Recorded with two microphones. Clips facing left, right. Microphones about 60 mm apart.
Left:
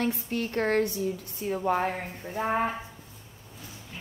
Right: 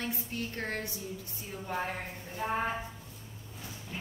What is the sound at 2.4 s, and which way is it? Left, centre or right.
Speech, left.